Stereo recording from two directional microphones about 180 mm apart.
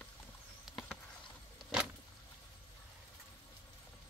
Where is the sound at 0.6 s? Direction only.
Centre (ahead or behind).